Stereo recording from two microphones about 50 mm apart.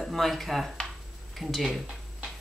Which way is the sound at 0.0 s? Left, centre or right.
Centre.